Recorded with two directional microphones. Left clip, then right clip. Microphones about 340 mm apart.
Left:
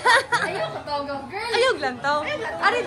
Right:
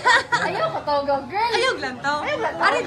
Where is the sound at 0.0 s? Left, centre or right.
Centre.